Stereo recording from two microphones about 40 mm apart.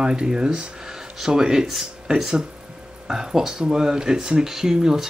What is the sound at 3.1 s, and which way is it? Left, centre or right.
Speech, centre.